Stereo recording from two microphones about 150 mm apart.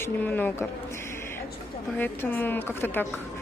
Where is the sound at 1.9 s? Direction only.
10° left (ahead or behind).